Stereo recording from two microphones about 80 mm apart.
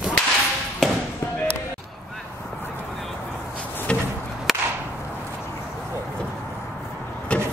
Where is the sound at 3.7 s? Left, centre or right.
Left.